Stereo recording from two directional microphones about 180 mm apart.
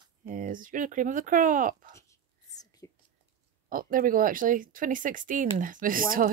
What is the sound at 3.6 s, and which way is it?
Speech, 50° right (ahead or behind).